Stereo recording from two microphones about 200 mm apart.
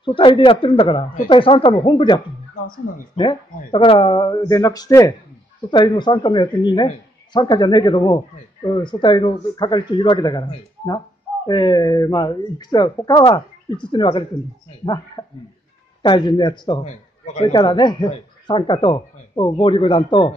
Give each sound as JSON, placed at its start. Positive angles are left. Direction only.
{"t": 0.0, "sound": "speech", "side_deg": 25}
{"t": 15.2, "sound": "a sound", "side_deg": 15}
{"t": 16.0, "sound": "speech", "side_deg": 25}
{"t": 16.8, "sound": "a man's voice", "side_deg": 35}
{"t": 17.5, "sound": "speech", "side_deg": 20}